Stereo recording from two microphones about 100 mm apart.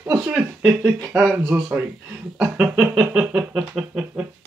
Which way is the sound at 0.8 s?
40° right (ahead or behind).